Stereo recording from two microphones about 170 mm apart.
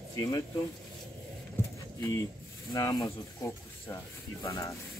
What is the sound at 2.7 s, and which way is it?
Speech, 20° left (ahead or behind).